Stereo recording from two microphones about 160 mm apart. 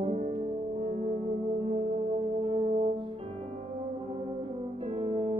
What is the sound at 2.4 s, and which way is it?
Music, 35° right (ahead or behind).